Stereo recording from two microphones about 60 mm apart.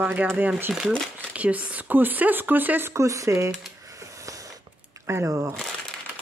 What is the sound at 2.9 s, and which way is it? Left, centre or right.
Speech, right.